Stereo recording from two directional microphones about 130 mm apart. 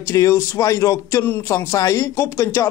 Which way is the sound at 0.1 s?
25° left (ahead or behind).